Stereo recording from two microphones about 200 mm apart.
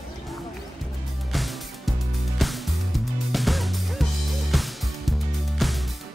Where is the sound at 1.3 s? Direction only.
Centre (ahead or behind).